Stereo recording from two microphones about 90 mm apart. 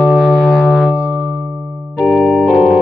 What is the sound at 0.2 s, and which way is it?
Music, 5° left (ahead or behind).